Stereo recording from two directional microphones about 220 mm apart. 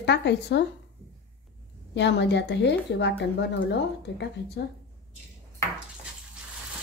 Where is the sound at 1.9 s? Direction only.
50° left (ahead or behind).